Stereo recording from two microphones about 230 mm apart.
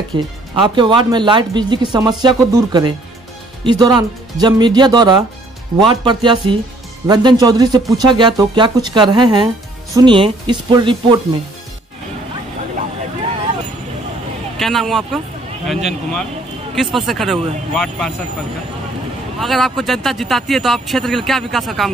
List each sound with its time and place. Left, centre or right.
0.1 s speech: centre
14.6 s speech: centre
19.4 s speech: centre